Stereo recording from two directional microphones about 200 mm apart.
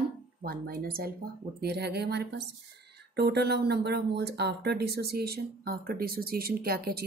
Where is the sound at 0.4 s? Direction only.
50° right (ahead or behind).